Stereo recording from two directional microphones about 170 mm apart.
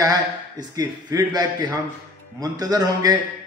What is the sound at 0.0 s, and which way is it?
A man's voice, 20° right (ahead or behind).